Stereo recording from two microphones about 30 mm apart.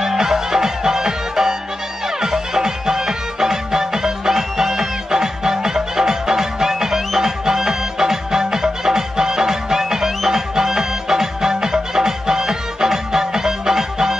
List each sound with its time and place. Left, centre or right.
0.0 s music: centre